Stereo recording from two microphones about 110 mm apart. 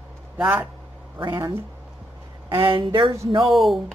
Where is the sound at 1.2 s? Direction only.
40° right (ahead or behind).